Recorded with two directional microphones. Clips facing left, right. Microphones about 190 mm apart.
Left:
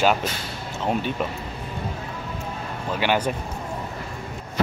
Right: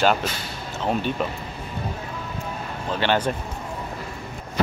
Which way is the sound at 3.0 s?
10° left (ahead or behind).